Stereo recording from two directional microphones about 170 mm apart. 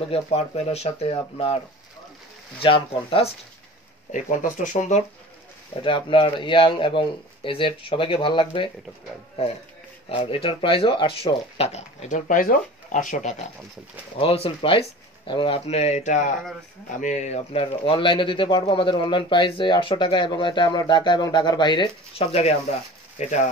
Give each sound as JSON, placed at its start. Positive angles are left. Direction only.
{"t": 0.1, "sound": "speech", "side_deg": 35}
{"t": 2.6, "sound": "speech", "side_deg": 30}
{"t": 4.1, "sound": "speech", "side_deg": 50}
{"t": 5.9, "sound": "speech", "side_deg": 30}
{"t": 10.0, "sound": "speech", "side_deg": 35}